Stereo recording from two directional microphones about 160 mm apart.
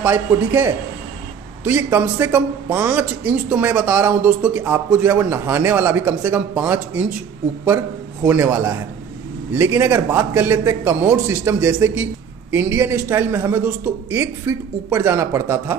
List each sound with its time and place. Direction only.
0.0 s a man's voice: 15° right (ahead or behind)
8.3 s a man's voice: 10° right (ahead or behind)